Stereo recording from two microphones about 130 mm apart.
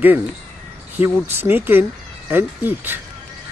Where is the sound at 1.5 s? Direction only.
15° right (ahead or behind).